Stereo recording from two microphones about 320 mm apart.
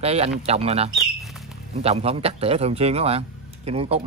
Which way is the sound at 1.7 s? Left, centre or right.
Centre.